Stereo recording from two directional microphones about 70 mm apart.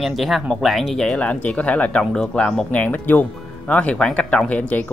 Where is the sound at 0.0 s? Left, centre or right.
Centre.